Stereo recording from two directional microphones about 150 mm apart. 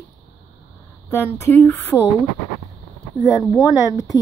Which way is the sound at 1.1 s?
15° left (ahead or behind).